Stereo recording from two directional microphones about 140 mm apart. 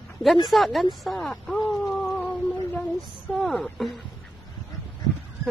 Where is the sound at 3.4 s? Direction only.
Centre (ahead or behind).